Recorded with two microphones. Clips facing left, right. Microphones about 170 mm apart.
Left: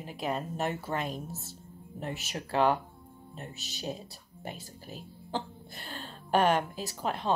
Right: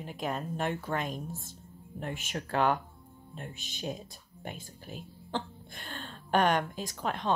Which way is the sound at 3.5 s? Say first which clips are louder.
Even; 40° left (ahead or behind).